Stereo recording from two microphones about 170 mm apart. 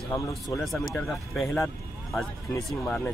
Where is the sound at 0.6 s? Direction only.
Centre (ahead or behind).